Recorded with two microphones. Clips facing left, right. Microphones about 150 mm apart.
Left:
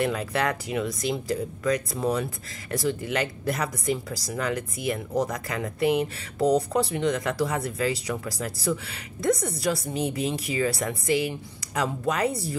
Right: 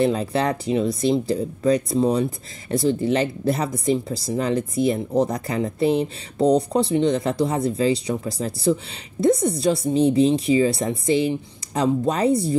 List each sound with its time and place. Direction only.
0.0 s speech: 30° right (ahead or behind)